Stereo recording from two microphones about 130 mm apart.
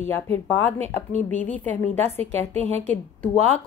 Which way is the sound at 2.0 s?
55° right (ahead or behind).